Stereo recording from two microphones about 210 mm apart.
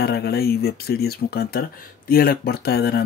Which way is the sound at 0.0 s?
50° left (ahead or behind).